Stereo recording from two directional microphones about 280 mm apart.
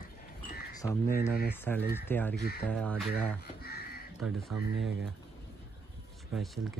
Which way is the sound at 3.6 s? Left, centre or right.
Left.